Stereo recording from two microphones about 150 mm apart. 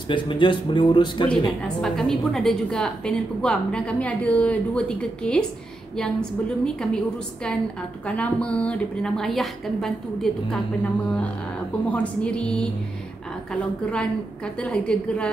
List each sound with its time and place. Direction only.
0.1 s speech: 35° left (ahead or behind)
1.8 s a woman's voice: 5° left (ahead or behind)
6.6 s a woman's voice: 5° left (ahead or behind)
8.0 s a woman's voice: 10° left (ahead or behind)